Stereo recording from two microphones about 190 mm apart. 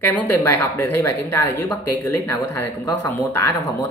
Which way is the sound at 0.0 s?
10° left (ahead or behind).